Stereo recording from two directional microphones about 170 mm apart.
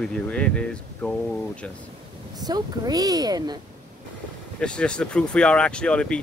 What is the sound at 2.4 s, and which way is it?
Speech, 20° right (ahead or behind).